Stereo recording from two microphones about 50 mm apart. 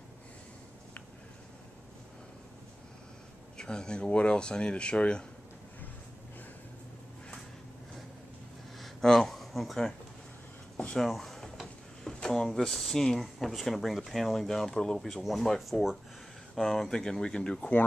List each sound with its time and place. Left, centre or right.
3.5 s speech: centre
8.7 s a sound: centre
11.0 s speech: centre
11.6 s drawer open or close: centre
12.4 s speech: centre
17.6 s speech: left